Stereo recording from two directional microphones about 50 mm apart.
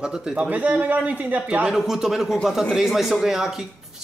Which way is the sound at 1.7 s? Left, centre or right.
Centre.